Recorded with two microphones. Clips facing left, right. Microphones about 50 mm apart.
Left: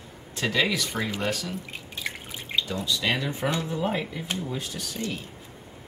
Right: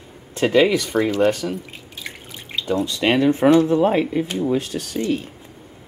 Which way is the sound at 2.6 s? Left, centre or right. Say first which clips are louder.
Right 11 dB; right.